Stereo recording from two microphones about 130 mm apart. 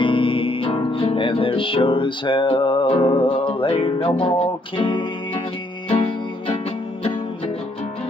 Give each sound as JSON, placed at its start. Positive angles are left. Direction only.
{"t": 0.0, "sound": "music", "side_deg": 40}